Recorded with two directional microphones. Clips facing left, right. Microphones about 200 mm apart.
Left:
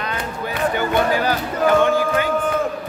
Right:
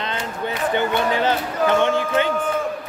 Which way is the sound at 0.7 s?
25° right (ahead or behind).